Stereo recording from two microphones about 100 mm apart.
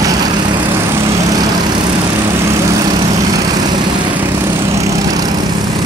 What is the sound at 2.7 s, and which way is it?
Vehicle, 40° right (ahead or behind).